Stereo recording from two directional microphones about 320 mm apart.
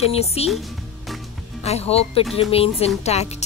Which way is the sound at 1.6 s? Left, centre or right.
Centre.